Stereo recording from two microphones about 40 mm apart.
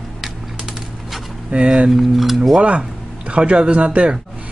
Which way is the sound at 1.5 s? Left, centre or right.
Right.